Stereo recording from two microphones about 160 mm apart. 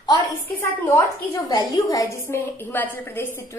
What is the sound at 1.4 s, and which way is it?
A woman's voice, 20° left (ahead or behind).